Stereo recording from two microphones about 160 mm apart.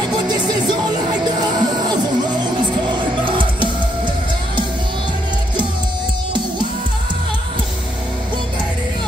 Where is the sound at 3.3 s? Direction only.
30° right (ahead or behind).